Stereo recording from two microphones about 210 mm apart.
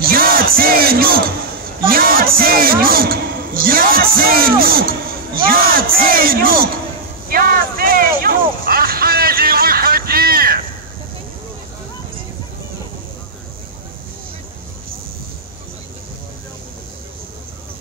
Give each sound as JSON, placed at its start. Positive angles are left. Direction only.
{"t": 0.0, "sound": "music", "side_deg": -45}
{"t": 1.9, "sound": "a man's voice", "side_deg": -45}
{"t": 7.2, "sound": "a sound", "side_deg": -45}